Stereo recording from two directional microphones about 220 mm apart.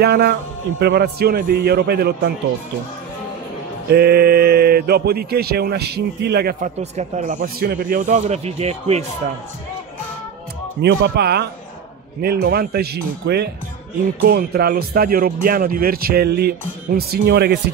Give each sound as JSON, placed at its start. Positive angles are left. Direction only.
{"t": 0.0, "sound": "speech", "side_deg": -45}
{"t": 3.9, "sound": "speech", "side_deg": -45}
{"t": 6.8, "sound": "a man's voice", "side_deg": -30}
{"t": 10.8, "sound": "speech", "side_deg": -50}